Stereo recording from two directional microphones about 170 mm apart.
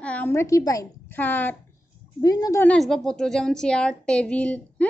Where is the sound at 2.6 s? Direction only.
5° left (ahead or behind).